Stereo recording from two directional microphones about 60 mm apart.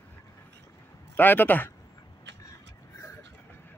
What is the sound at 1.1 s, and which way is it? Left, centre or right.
Speech, left.